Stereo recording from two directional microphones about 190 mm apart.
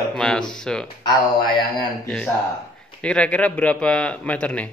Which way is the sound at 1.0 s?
25° left (ahead or behind).